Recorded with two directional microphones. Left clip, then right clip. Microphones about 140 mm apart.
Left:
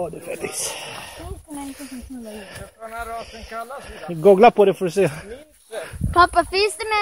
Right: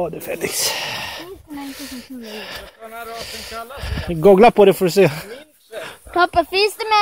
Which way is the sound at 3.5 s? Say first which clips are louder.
Even; 10° right (ahead or behind).